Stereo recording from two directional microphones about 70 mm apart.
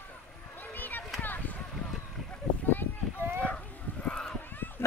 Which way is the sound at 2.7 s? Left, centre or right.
Left.